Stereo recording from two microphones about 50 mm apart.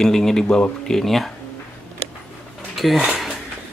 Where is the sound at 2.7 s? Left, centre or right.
Centre.